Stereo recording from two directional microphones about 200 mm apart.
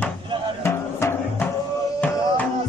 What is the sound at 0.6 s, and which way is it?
Music, 10° left (ahead or behind).